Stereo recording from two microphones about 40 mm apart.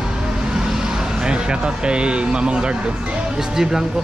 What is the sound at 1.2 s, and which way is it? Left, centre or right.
Speech, right.